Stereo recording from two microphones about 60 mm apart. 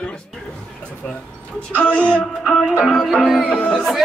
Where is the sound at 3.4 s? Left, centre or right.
Centre.